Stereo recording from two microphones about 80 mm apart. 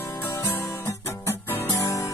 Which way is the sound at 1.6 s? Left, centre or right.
Left.